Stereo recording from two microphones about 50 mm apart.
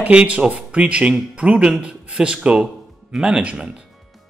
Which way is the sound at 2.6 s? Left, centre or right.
Centre.